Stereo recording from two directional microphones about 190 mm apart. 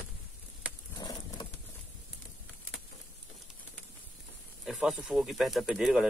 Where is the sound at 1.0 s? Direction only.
20° left (ahead or behind).